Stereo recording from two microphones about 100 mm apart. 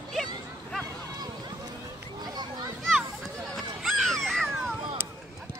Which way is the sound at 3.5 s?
Centre (ahead or behind).